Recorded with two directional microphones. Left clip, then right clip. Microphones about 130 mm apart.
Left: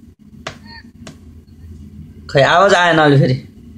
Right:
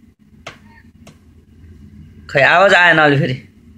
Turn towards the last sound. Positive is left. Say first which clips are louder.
# even
turn(degrees=20)  # may be behind; listen again after turning